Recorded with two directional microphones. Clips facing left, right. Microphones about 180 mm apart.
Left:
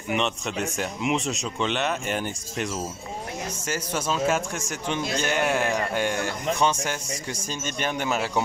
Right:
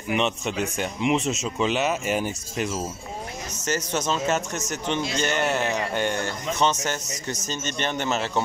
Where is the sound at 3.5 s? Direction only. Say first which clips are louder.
Right 5 dB; 10° left (ahead or behind).